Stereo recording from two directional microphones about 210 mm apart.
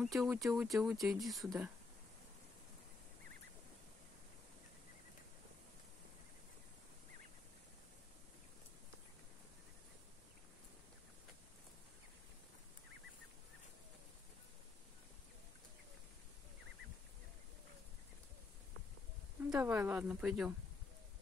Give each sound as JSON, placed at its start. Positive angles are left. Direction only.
{"t": 0.0, "sound": "speech", "side_deg": 0}
{"t": 19.5, "sound": "speech", "side_deg": -10}